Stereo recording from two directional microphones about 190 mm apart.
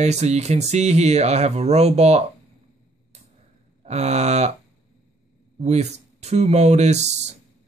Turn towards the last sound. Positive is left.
turn(degrees=-35)  # may be behind; listen again after turning